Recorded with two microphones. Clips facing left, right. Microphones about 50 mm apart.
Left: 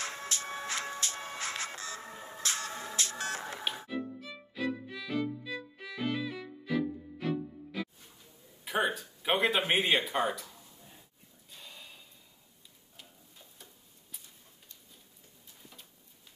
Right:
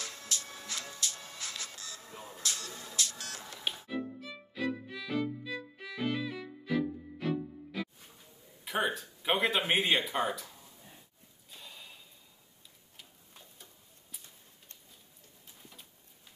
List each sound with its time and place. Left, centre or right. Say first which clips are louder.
0.0 s music: left 4 dB; left
3.9 s music: even; centre
8.6 s speech: left 1 dB; centre
11.5 s a sound: even; centre